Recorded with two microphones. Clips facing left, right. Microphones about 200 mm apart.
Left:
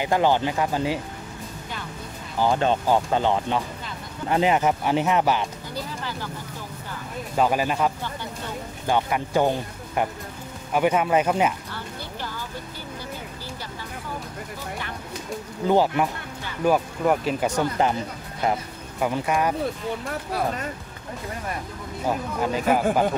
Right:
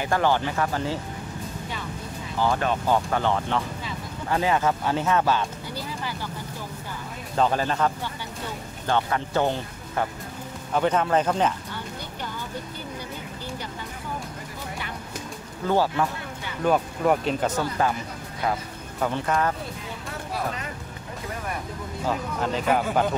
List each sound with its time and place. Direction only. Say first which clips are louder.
0.0 s speech: left 2 dB; 15° left (ahead or behind)
2.4 s speech: left 3 dB; 25° left (ahead or behind)
7.3 s speech: left 1 dB; 10° left (ahead or behind)
15.6 s speech: left 3 dB; 15° left (ahead or behind)
16.6 s speech: left 1 dB; 5° left (ahead or behind)
17.6 s speech: left 2 dB; 20° left (ahead or behind)
18.9 s speech: left 1 dB; 10° left (ahead or behind)
22.1 s speech: left 2 dB; 5° left (ahead or behind)